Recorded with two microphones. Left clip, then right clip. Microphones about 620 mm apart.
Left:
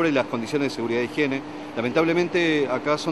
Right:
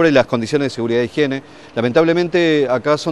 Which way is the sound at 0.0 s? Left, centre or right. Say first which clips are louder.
Right 9 dB; right.